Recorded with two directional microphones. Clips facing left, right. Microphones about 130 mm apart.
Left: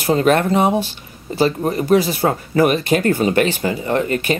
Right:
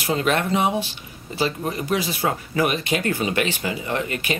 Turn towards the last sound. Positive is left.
turn(degrees=40)  # may be behind; listen again after turning